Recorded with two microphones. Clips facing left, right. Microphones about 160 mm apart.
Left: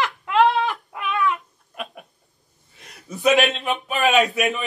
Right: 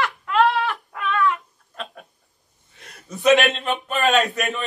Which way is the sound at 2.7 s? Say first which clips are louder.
Left 1 dB; centre (ahead or behind).